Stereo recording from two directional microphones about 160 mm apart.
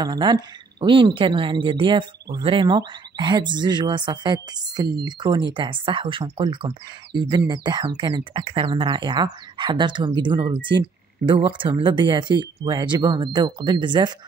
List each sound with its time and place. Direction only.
0.0 s speech: 25° right (ahead or behind)